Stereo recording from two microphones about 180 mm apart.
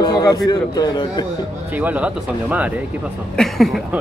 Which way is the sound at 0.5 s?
25° left (ahead or behind).